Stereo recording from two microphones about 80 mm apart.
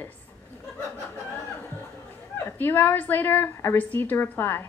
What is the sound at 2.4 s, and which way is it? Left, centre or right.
A woman's voice, left.